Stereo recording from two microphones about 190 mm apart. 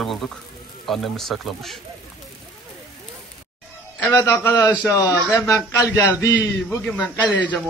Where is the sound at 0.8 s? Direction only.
Centre (ahead or behind).